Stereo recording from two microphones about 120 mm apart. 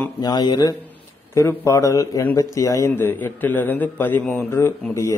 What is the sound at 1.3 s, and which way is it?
A man's voice, 25° left (ahead or behind).